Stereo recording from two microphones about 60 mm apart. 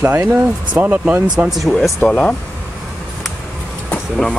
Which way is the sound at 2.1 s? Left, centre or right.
Centre.